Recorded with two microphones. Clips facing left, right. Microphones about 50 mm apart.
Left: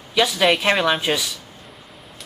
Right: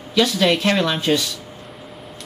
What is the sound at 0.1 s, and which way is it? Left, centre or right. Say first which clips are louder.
Speech: even; centre.